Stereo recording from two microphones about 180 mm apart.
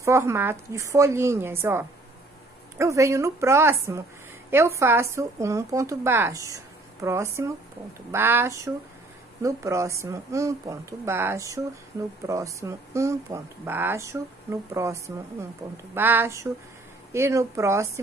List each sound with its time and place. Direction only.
0.0 s speech: 15° right (ahead or behind)